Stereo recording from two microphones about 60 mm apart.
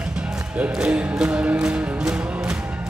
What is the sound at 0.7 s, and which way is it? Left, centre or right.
Music, centre.